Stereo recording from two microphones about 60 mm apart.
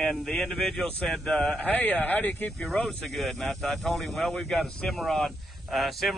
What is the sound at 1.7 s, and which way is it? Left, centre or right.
Speech, left.